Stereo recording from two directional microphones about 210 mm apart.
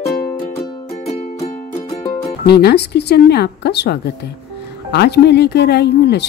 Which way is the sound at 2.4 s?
50° left (ahead or behind).